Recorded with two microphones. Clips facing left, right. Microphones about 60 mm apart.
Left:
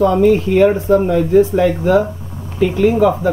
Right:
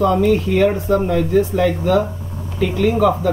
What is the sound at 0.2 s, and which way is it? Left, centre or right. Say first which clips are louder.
Speech: left 4 dB; centre.